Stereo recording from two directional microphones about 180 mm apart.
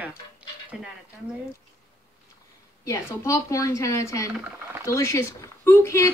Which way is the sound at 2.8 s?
15° left (ahead or behind).